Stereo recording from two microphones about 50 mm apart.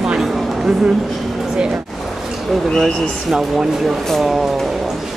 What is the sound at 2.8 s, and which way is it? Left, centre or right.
Speech, centre.